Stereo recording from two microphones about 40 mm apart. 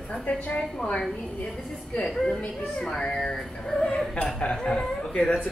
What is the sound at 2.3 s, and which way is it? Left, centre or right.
Speech, left.